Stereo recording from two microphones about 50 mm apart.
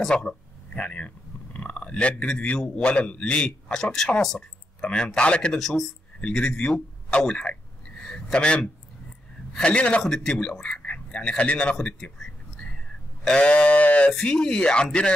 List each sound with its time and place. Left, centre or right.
0.1 s a sound: left
2.7 s a man's voice: left
5.6 s speech: centre
6.2 s a man's voice: left
8.0 s a sound: centre
9.7 s a man's voice: left
11.7 s speech: centre
13.2 s a man's voice: centre
14.2 s a man's voice: centre